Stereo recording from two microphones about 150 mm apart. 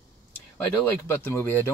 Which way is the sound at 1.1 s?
15° left (ahead or behind).